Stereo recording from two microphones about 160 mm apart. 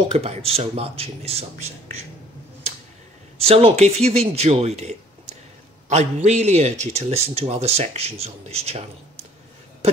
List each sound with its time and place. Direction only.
0.1 s speech: 40° right (ahead or behind)
3.3 s a man's voice: 35° right (ahead or behind)